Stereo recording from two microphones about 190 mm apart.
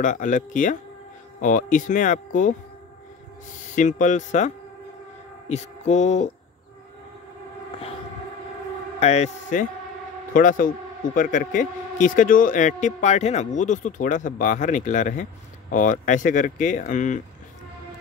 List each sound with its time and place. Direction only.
0.0 s speech: 40° left (ahead or behind)
3.7 s speech: 40° left (ahead or behind)
5.5 s speech: 40° left (ahead or behind)
9.0 s a man's voice: 35° left (ahead or behind)